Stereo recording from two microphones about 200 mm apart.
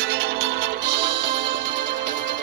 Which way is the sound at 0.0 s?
55° right (ahead or behind).